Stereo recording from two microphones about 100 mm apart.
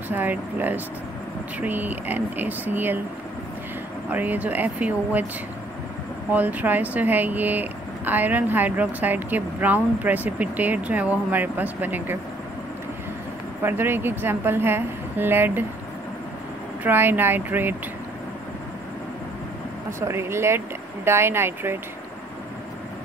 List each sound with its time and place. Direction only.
0.1 s speech: 20° right (ahead or behind)
4.1 s speech: 15° right (ahead or behind)
6.3 s speech: 15° right (ahead or behind)
13.6 s a woman's voice: 20° right (ahead or behind)
16.8 s a woman's voice: 20° right (ahead or behind)
20.0 s a woman's voice: 25° right (ahead or behind)